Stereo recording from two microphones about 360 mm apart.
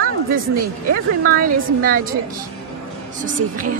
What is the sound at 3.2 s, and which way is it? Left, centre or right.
Speech, right.